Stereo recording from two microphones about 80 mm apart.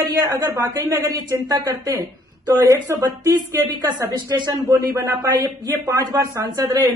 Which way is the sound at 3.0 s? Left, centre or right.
Right.